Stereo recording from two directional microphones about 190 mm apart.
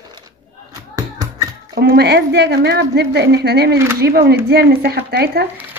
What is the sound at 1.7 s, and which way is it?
Speech, 55° right (ahead or behind).